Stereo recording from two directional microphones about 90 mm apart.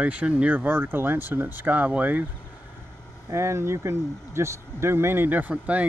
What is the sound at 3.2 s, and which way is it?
Speech, 30° right (ahead or behind).